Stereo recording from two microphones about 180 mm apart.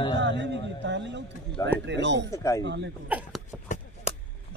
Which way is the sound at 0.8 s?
75° right (ahead or behind).